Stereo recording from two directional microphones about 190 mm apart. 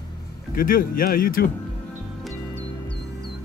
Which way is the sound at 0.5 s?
50° left (ahead or behind).